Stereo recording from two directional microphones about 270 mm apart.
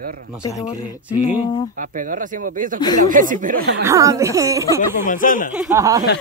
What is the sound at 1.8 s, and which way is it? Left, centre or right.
Speech, right.